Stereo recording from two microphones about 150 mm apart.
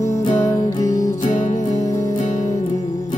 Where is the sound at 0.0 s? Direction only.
55° left (ahead or behind).